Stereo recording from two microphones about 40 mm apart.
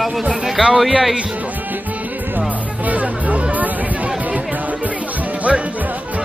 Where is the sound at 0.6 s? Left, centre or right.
Centre.